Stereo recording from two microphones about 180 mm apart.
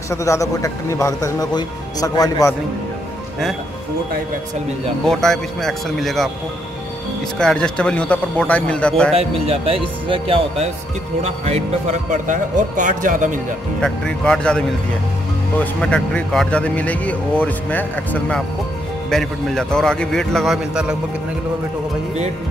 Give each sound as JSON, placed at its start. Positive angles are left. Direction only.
{"t": 0.1, "sound": "speech", "side_deg": 15}
{"t": 5.0, "sound": "a man's voice", "side_deg": 5}
{"t": 7.3, "sound": "speech", "side_deg": 5}
{"t": 9.1, "sound": "speech", "side_deg": -30}
{"t": 13.7, "sound": "a man's voice", "side_deg": 5}
{"t": 15.6, "sound": "a man's voice", "side_deg": 5}